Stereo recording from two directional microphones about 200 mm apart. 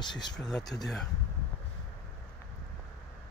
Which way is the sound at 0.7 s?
5° left (ahead or behind).